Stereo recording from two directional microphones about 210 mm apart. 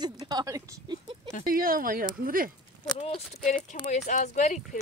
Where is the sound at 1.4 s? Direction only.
40° right (ahead or behind).